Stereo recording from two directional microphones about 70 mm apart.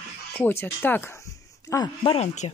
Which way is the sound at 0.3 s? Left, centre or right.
Left.